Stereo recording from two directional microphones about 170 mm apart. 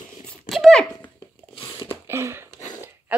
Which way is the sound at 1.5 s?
30° left (ahead or behind).